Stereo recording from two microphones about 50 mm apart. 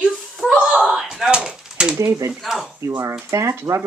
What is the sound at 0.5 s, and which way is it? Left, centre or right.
Speech, centre.